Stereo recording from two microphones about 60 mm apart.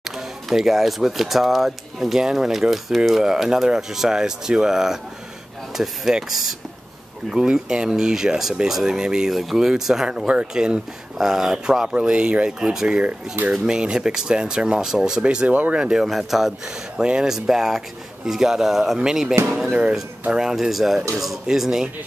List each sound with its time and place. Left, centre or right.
0.0 s speech: centre
15.2 s speech: right
16.0 s speech: centre